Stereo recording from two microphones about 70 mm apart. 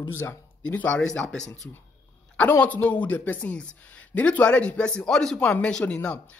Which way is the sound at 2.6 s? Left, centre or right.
Left.